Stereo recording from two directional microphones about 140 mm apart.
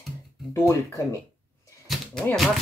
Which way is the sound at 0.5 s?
25° left (ahead or behind).